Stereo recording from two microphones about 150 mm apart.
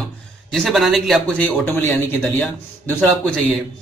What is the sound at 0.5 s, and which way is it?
A man's voice, centre (ahead or behind).